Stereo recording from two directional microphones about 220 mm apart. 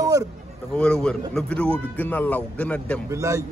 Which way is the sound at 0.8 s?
5° left (ahead or behind).